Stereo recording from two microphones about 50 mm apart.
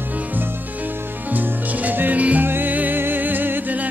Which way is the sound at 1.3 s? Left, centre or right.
Right.